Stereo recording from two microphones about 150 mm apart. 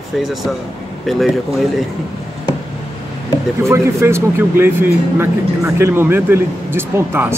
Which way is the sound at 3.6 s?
20° right (ahead or behind).